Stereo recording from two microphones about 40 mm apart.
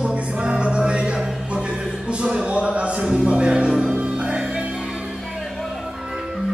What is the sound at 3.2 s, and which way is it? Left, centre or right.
Music, right.